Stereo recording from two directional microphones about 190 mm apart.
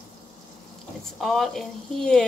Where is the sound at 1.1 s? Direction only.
Centre (ahead or behind).